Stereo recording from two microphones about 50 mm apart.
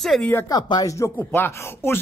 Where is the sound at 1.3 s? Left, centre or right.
Left.